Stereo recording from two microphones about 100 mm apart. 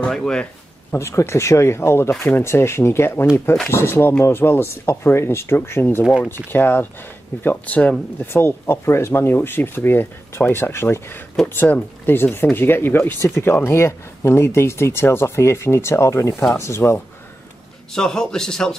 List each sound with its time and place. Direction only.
0.0 s speech: 5° left (ahead or behind)
0.9 s speech: 25° left (ahead or behind)
17.9 s a man's voice: 5° left (ahead or behind)